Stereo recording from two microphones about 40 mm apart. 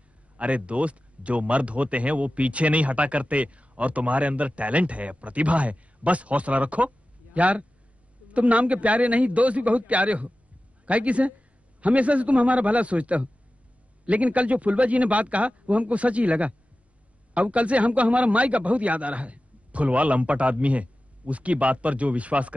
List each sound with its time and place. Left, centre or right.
0.4 s speech: right